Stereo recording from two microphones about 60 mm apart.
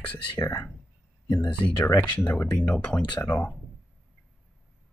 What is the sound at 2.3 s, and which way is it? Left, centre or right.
Speech, left.